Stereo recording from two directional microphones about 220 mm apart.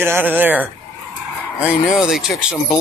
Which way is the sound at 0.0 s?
10° right (ahead or behind).